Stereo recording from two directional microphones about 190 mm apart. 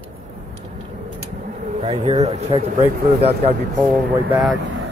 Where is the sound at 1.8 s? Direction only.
35° right (ahead or behind).